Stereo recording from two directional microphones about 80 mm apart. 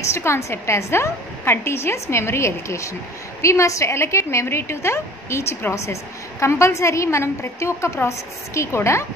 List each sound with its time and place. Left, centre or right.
0.1 s a woman's voice: left